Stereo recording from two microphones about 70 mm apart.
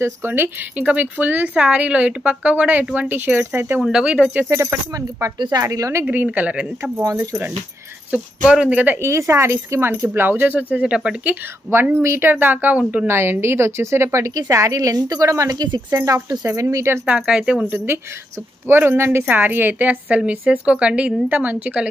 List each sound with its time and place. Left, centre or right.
0.0 s speech: right
3.8 s speech: centre
4.5 s a woman's voice: right
6.3 s speech: centre
6.8 s a woman's voice: right
8.1 s speech: centre
9.0 s speech: right; by 11.3 s centre
11.7 s a woman's voice: right
15.9 s a woman's voice: right
17.0 s speech: centre
17.6 s speech: right